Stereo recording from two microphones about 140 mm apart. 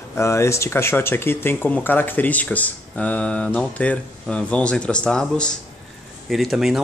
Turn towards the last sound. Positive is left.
turn(degrees=0)  # may be behind; listen again after turning